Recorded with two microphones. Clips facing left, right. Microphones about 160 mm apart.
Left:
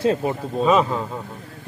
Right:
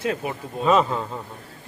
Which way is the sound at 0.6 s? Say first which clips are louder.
Left 1 dB; 5° left (ahead or behind).